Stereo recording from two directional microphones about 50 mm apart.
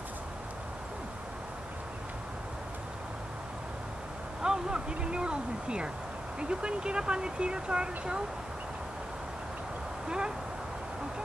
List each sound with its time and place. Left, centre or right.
4.4 s speech: centre
10.0 s speech: centre